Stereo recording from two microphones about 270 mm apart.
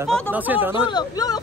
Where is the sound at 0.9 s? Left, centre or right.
Centre.